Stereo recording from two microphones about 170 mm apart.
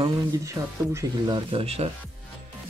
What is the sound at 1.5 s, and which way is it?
Speech, 35° right (ahead or behind).